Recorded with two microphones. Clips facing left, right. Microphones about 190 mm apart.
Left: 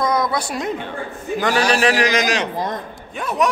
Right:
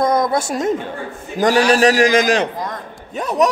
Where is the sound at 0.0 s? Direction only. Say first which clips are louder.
Right 4 dB; 50° right (ahead or behind).